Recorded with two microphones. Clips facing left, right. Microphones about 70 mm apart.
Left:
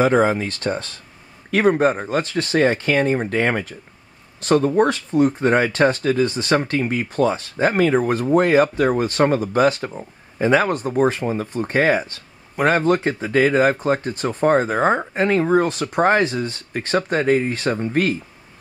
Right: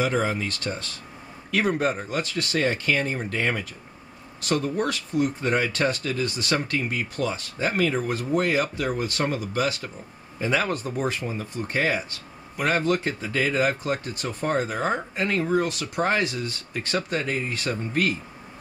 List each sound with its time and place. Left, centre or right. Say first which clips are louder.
0.0 s speech: left 8 dB; left